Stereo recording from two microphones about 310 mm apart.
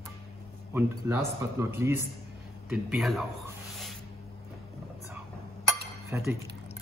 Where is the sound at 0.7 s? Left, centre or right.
Centre.